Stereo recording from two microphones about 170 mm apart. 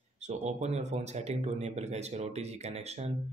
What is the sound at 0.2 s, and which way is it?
Speech, 40° right (ahead or behind).